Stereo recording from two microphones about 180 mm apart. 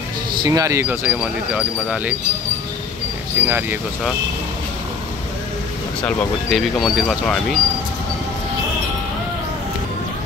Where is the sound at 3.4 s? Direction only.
15° right (ahead or behind).